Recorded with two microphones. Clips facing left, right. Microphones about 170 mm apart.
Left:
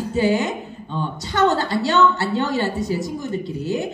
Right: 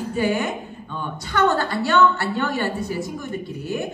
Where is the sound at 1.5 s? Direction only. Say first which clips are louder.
Left 2 dB; 55° right (ahead or behind).